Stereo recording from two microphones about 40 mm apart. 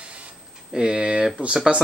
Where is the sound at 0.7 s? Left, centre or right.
Centre.